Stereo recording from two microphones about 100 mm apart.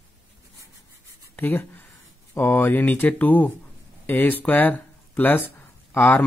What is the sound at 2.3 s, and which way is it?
Speech, 25° left (ahead or behind).